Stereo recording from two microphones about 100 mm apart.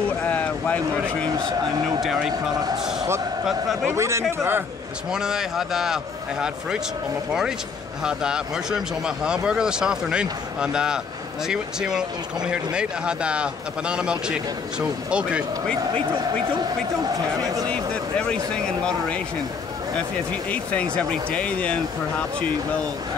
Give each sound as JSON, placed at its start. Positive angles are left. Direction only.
{"t": 0.2, "sound": "a sound", "side_deg": 15}
{"t": 2.0, "sound": "speech", "side_deg": -5}
{"t": 3.8, "sound": "speech", "side_deg": -30}
{"t": 5.1, "sound": "speech", "side_deg": -5}
{"t": 8.0, "sound": "speech", "side_deg": -10}
{"t": 18.3, "sound": "speech", "side_deg": 10}
{"t": 20.5, "sound": "speech", "side_deg": 15}